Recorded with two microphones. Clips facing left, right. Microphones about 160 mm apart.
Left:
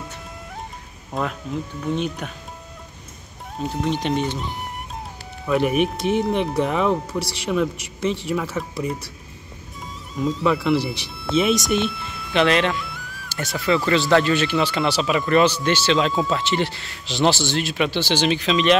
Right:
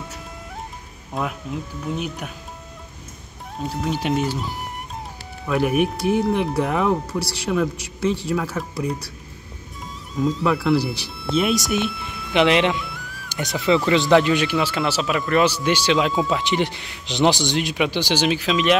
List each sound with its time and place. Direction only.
1.1 s speech: centre (ahead or behind)
3.6 s speech: centre (ahead or behind)
4.4 s music: centre (ahead or behind)
5.4 s speech: centre (ahead or behind)
12.3 s speech: 15° right (ahead or behind)
12.8 s music: centre (ahead or behind)
13.8 s speech: 15° right (ahead or behind); by 15.4 s centre (ahead or behind)
15.4 s speech: 10° right (ahead or behind)